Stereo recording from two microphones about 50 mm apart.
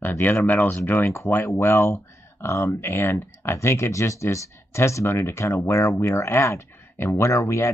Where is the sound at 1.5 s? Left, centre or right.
Left.